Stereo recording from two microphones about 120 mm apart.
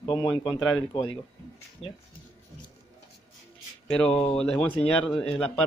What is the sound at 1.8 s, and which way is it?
Speech, 50° left (ahead or behind).